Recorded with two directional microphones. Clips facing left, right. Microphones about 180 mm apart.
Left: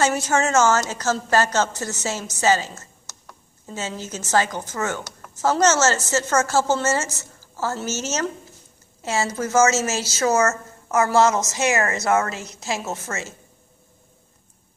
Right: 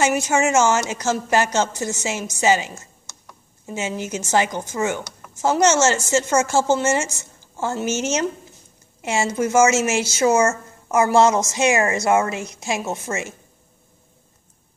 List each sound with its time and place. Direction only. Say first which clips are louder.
0.0 s a woman's voice: right 2 dB; 10° right (ahead or behind)